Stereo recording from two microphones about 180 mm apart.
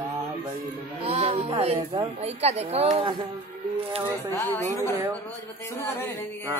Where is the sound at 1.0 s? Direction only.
35° right (ahead or behind).